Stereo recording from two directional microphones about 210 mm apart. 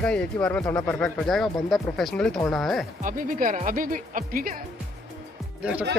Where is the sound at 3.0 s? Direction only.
40° right (ahead or behind).